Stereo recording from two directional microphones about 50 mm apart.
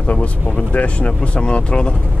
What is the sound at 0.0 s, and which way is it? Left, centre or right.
Speech, left.